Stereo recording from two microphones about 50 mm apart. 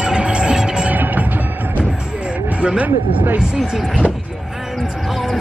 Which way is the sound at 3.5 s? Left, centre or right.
Centre.